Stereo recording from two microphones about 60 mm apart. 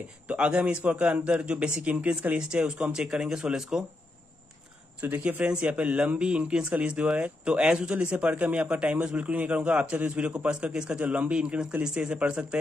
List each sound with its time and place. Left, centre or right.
0.3 s a man's voice: centre
5.0 s a man's voice: right
5.4 s a man's voice: centre